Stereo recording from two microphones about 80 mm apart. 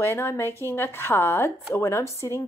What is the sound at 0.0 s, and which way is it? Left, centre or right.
Speech, left.